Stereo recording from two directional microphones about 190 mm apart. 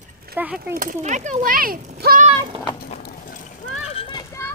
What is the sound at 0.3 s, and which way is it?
Speech, 10° right (ahead or behind).